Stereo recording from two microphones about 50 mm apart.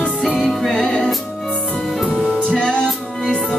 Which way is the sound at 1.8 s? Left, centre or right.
Centre.